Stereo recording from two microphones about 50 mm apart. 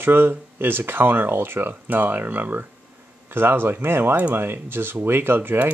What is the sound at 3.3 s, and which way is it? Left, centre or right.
Speech, right.